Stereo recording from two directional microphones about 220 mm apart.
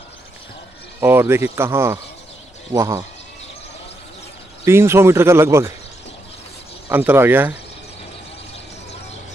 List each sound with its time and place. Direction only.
1.0 s speech: 10° right (ahead or behind)
4.6 s speech: 10° right (ahead or behind)
6.9 s speech: 10° right (ahead or behind)